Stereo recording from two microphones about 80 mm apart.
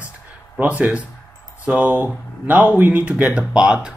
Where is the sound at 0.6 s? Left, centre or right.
Centre.